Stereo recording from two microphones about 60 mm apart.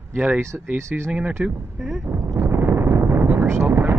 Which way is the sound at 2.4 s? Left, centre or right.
Right.